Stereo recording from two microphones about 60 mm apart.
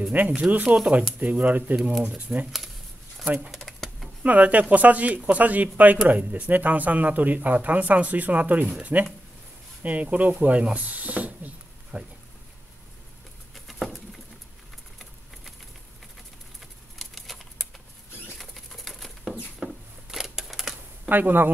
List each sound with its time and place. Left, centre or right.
0.4 s speech: right
1.8 s speech: centre
2.0 s speech: right
3.5 s a sound: centre
4.2 s speech: right
10.4 s snake: right
13.7 s patter: centre
17.0 s a sound: centre
21.1 s speech: right